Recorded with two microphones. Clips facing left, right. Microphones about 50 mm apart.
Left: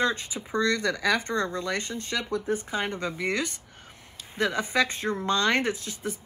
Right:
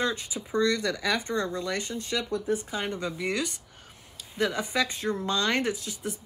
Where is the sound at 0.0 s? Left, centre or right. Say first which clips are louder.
Left 3 dB; left.